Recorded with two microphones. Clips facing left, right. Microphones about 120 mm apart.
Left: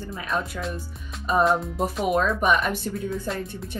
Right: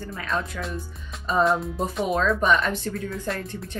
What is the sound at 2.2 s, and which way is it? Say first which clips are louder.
Speech: right 1 dB; 15° left (ahead or behind).